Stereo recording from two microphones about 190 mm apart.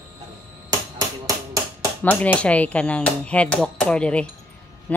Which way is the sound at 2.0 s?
10° left (ahead or behind).